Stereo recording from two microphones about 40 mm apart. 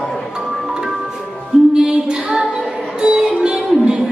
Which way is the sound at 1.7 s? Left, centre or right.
Centre.